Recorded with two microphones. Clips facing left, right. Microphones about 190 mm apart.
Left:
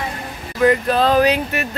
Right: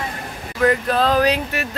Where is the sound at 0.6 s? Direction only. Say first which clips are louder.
Left 2 dB; centre (ahead or behind).